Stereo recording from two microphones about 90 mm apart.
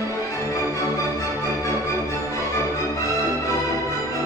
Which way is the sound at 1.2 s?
35° left (ahead or behind).